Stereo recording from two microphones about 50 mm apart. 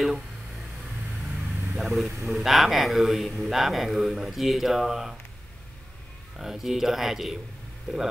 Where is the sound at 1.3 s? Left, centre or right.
Right.